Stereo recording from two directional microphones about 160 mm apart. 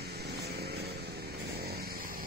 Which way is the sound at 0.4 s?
90° right.